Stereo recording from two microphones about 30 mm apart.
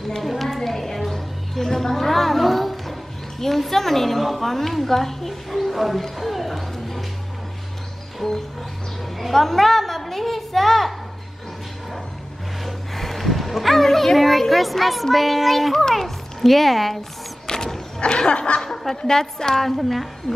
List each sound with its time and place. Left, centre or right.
0.2 s a sound: centre
6.1 s speech: centre
9.2 s a woman's voice: centre
12.6 s music: centre
13.8 s speech: centre
14.1 s a woman's voice: centre
17.5 s a sound: centre
18.0 s laughter: left
18.6 s a woman's voice: centre
19.6 s a woman's voice: centre